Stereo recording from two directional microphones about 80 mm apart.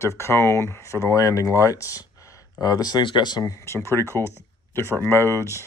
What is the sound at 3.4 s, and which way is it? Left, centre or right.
Speech, left.